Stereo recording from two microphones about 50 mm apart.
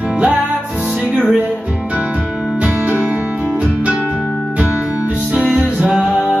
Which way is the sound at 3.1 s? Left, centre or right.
Right.